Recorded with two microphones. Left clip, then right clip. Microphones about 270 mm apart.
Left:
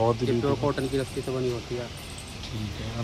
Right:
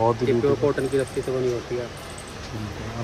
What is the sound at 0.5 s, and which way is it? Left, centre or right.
Speech, left.